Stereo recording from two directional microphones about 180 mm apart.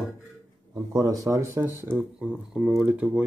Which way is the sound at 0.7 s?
20° right (ahead or behind).